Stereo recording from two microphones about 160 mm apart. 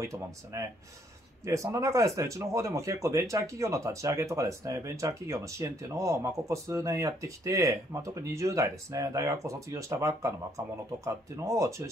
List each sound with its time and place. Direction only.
0.0 s speech: 20° right (ahead or behind)